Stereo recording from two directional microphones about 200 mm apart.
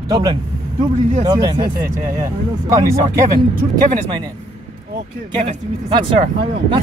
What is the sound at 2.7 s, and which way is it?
Speech, 15° right (ahead or behind).